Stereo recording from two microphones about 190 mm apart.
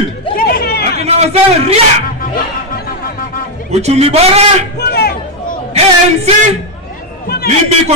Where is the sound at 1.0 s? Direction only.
35° right (ahead or behind).